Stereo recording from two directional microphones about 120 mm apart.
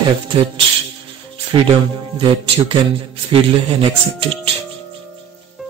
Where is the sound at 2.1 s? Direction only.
45° right (ahead or behind).